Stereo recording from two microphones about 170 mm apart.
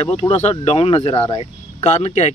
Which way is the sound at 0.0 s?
35° left (ahead or behind).